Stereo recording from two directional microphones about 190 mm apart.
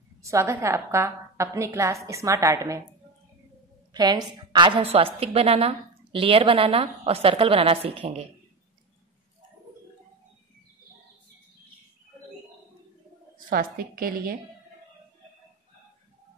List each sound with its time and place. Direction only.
0.2 s a woman's voice: 15° right (ahead or behind)
3.9 s a woman's voice: 20° right (ahead or behind)
13.5 s a woman's voice: 50° right (ahead or behind)